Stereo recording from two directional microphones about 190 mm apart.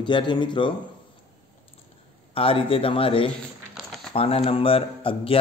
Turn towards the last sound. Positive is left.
turn(degrees=30)  # may be behind; listen again after turning